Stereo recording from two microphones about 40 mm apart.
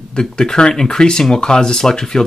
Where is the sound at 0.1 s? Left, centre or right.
Left.